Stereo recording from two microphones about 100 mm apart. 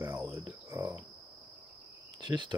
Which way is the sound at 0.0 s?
25° right (ahead or behind).